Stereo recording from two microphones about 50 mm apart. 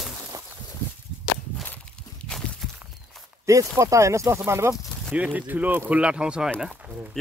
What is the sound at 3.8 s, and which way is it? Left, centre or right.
Speech, right.